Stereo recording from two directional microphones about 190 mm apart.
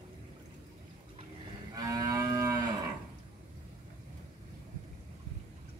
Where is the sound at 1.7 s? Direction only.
20° right (ahead or behind).